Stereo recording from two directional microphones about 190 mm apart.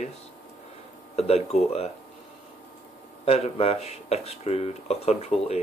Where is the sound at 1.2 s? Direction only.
35° left (ahead or behind).